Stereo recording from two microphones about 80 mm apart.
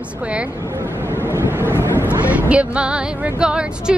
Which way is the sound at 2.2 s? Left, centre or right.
Centre.